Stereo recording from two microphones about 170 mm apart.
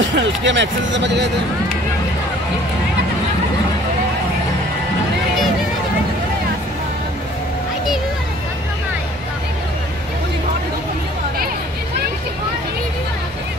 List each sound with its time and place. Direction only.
0.0 s speech: 90° right